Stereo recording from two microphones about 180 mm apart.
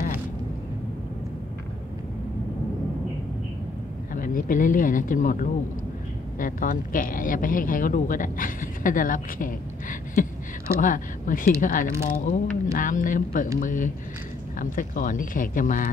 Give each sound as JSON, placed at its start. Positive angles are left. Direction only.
{"t": 4.1, "sound": "speech", "side_deg": 50}